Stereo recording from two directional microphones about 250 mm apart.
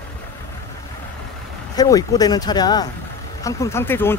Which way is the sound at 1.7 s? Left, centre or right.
Centre.